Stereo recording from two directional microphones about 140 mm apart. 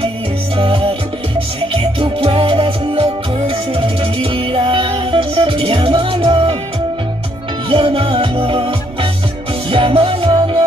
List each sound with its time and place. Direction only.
0.6 s music: 40° right (ahead or behind)
7.7 s music: 40° right (ahead or behind)